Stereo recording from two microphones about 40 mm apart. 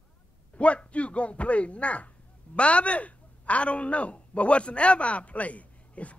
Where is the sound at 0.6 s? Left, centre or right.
Left.